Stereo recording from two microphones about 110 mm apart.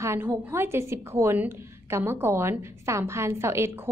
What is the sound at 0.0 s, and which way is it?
A woman's voice, 20° right (ahead or behind).